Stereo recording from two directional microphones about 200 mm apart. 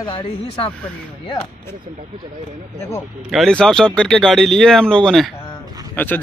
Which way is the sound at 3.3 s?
5° left (ahead or behind).